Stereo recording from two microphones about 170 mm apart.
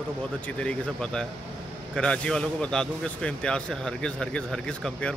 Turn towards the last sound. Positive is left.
turn(degrees=5)  # may be behind; listen again after turning